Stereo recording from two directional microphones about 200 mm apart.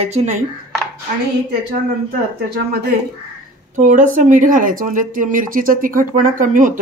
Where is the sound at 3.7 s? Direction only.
40° right (ahead or behind).